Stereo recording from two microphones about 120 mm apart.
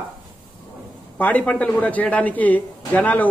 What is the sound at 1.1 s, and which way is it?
A man's voice, 10° left (ahead or behind).